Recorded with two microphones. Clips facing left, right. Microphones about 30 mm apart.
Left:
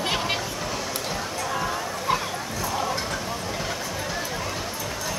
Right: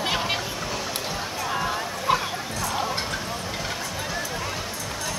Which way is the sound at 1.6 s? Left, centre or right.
Centre.